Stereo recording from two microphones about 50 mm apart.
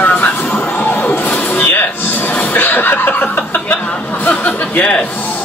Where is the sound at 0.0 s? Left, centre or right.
Left.